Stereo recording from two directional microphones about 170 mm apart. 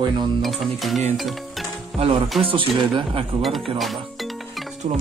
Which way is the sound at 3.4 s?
Centre (ahead or behind).